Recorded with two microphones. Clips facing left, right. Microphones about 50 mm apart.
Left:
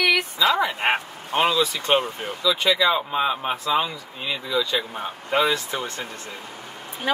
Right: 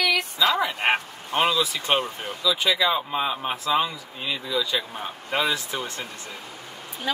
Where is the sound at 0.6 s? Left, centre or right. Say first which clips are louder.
Left 1 dB; centre.